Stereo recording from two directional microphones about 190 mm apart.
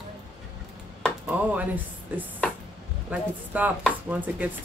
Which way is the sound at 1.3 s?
10° right (ahead or behind).